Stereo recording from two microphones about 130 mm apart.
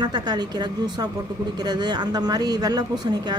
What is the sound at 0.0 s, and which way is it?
A woman's voice, 30° right (ahead or behind).